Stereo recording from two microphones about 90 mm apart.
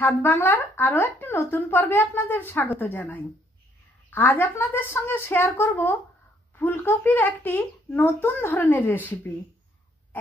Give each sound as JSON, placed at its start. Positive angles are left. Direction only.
{"t": 0.0, "sound": "speech", "side_deg": 25}